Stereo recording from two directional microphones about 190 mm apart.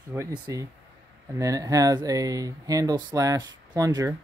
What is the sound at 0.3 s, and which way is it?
Speech, 15° right (ahead or behind).